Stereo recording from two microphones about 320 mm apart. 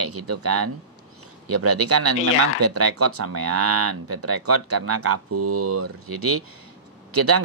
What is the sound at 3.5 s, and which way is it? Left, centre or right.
Speech, right.